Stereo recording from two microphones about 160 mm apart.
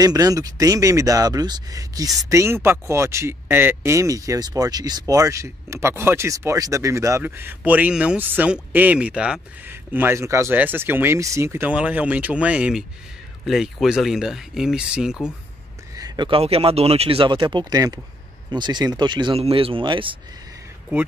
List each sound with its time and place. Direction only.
0.0 s speech: 20° right (ahead or behind); by 15.1 s 5° right (ahead or behind)
16.0 s speech: 30° right (ahead or behind)